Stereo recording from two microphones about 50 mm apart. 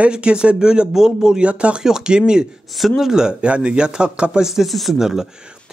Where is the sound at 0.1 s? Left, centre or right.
Centre.